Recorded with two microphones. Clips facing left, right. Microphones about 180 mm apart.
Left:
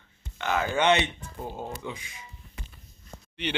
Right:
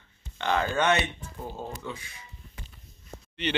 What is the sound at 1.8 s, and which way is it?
Speech, 15° left (ahead or behind).